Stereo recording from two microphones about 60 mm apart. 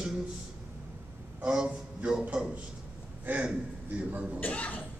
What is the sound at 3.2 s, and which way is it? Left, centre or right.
Speech, right.